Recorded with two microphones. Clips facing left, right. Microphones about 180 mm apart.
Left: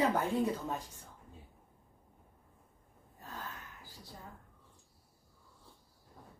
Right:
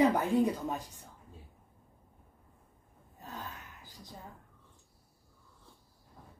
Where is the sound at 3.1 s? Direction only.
20° right (ahead or behind).